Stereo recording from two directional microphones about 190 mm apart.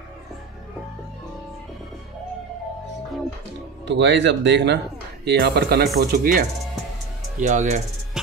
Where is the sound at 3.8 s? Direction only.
70° right (ahead or behind); by 6.4 s 50° right (ahead or behind).